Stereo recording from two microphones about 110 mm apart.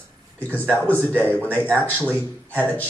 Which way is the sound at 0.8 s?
20° right (ahead or behind).